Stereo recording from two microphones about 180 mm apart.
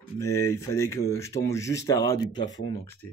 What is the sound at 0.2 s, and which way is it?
Speech, 15° left (ahead or behind).